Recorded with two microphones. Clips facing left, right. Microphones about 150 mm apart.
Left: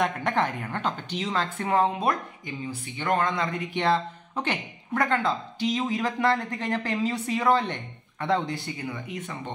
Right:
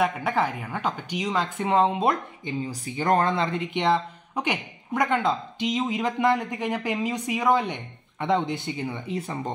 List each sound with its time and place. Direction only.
0.0 s speech: 5° right (ahead or behind); by 2.5 s 25° right (ahead or behind)
2.7 s speech: 40° right (ahead or behind)